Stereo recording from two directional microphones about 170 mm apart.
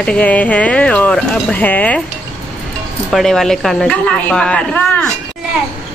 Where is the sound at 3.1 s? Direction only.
Centre (ahead or behind).